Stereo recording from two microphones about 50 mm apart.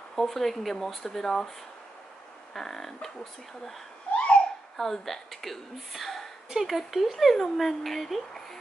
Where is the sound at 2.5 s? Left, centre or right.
Centre.